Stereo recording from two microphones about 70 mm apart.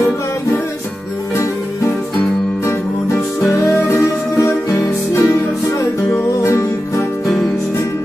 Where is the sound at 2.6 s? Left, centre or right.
Left.